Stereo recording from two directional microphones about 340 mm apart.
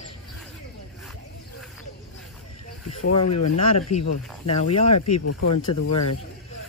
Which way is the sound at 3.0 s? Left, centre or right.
Left.